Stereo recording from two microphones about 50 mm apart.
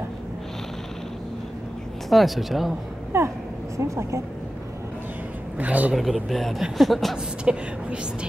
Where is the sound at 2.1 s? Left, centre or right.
Centre.